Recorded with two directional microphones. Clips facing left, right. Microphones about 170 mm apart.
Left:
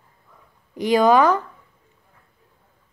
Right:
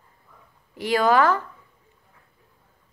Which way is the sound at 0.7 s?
20° left (ahead or behind).